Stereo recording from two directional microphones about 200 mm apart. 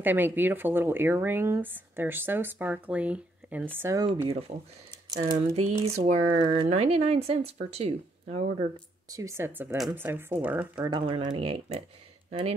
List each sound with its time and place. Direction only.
0.0 s speech: 10° right (ahead or behind); by 8.6 s 30° right (ahead or behind)
9.1 s speech: 15° right (ahead or behind)
10.8 s speech: 20° right (ahead or behind)